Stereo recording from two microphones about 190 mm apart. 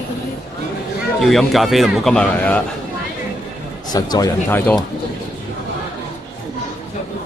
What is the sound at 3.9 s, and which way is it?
Speech, 20° left (ahead or behind).